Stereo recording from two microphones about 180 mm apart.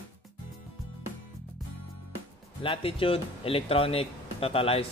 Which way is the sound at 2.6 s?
30° left (ahead or behind).